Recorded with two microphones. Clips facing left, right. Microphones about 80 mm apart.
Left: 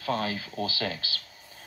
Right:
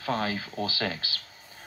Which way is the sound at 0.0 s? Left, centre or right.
Right.